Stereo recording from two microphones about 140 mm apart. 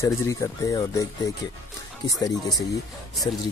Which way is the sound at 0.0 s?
20° left (ahead or behind).